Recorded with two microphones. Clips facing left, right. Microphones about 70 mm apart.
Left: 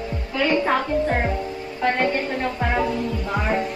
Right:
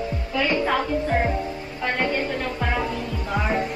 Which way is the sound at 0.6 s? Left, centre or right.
Left.